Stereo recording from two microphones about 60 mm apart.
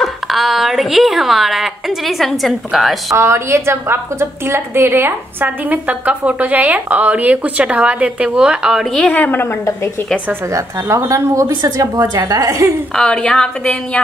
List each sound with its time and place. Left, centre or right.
0.0 s a woman's voice: centre
3.2 s a woman's voice: right; by 8.8 s centre
9.1 s a woman's voice: left
10.5 s speech: right
12.2 s a woman's voice: right
12.9 s a woman's voice: centre